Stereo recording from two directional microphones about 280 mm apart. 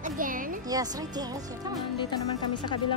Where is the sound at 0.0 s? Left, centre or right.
Right.